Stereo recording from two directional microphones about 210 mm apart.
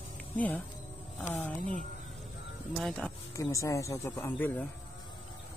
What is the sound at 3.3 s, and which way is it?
Speech, 15° left (ahead or behind).